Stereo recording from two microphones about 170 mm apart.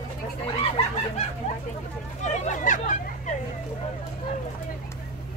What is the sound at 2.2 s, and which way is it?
Speech, 45° left (ahead or behind).